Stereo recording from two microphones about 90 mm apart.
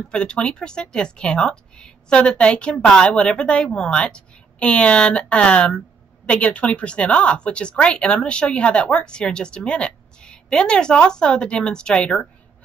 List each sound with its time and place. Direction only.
0.1 s speech: 10° left (ahead or behind)